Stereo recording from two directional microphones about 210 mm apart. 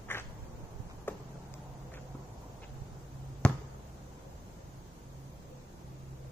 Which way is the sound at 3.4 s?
5° left (ahead or behind).